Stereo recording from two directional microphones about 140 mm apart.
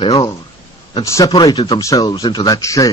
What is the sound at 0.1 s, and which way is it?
A man's voice, 25° left (ahead or behind).